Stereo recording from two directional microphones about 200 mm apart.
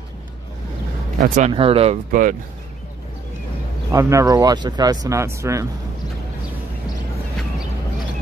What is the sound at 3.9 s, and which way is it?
Speech, 15° right (ahead or behind).